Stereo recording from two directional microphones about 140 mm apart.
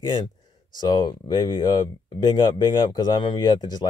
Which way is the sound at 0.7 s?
30° left (ahead or behind).